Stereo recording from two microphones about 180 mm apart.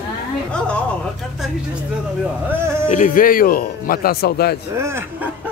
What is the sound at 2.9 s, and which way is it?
A man's voice, 45° left (ahead or behind).